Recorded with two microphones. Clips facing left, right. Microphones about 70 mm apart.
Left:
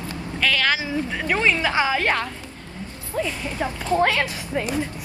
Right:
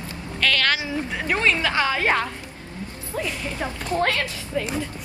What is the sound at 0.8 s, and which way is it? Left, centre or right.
Speech, centre.